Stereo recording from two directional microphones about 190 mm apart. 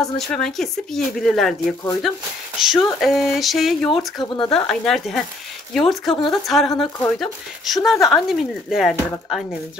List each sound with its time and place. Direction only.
0.0 s speech: centre (ahead or behind)
3.9 s speech: 25° left (ahead or behind)
4.5 s speech: 5° left (ahead or behind)
6.1 s speech: 25° left (ahead or behind)
6.4 s speech: centre (ahead or behind)